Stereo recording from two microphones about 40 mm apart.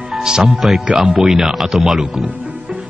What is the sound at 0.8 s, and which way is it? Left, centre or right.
Speech, centre.